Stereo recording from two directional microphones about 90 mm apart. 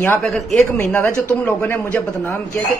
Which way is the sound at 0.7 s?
25° left (ahead or behind).